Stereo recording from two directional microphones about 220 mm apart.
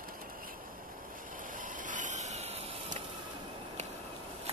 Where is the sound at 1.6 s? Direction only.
35° right (ahead or behind).